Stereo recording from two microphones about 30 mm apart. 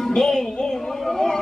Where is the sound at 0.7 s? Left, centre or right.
Centre.